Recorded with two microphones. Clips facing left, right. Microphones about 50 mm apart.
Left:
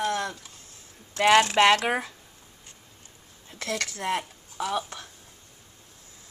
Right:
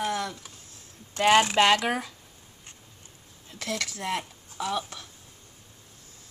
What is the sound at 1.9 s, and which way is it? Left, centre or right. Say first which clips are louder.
Speech: left 2 dB; centre.